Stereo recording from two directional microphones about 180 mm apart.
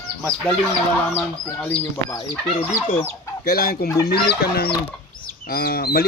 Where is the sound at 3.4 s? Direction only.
55° left (ahead or behind).